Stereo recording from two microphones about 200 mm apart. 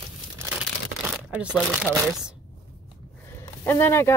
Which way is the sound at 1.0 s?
5° right (ahead or behind).